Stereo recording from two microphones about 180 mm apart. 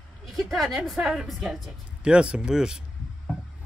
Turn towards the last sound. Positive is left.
turn(degrees=-5)  # may be behind; listen again after turning